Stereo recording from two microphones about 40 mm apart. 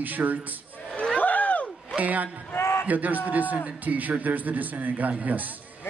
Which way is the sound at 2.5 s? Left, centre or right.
Left.